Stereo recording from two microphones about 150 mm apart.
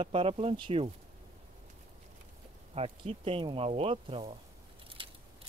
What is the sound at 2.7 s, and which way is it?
Speech, 40° right (ahead or behind).